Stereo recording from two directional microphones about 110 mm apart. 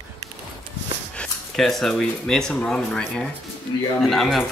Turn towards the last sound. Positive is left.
turn(degrees=0)  # may be behind; listen again after turning